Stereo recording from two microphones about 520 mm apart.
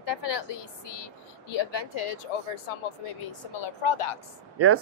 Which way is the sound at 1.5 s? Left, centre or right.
Left.